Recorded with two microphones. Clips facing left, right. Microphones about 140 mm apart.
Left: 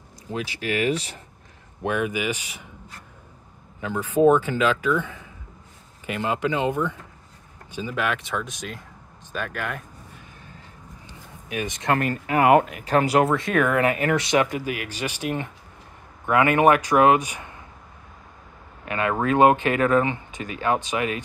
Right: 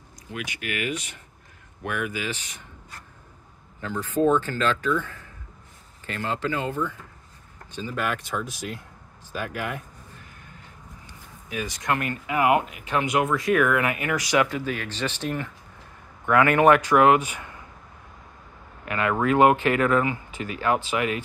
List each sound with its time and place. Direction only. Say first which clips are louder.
0.3 s speech: left 5 dB; 30° left (ahead or behind)
1.8 s a man's voice: left 5 dB; 20° left (ahead or behind)
3.8 s a man's voice: left 4 dB; 15° left (ahead or behind)
7.7 s speech: left 2 dB; 5° left (ahead or behind)
11.6 s speech: left 3 dB; 20° left (ahead or behind)
11.9 s speech: left 4 dB; 35° left (ahead or behind)
12.4 s speech: left 4 dB; 50° left (ahead or behind)
12.8 s speech: left 4 dB; 35° left (ahead or behind)
14.6 s a man's voice: even; 10° left (ahead or behind)
18.9 s speech: even; 25° left (ahead or behind)